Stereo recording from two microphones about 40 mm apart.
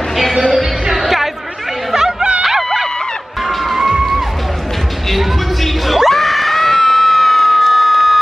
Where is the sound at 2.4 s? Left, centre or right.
Centre.